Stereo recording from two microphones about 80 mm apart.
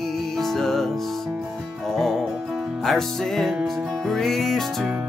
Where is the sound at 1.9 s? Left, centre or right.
Centre.